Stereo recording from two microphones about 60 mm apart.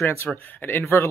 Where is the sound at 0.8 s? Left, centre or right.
Left.